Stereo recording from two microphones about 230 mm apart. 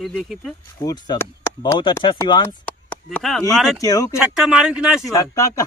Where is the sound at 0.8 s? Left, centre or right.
Centre.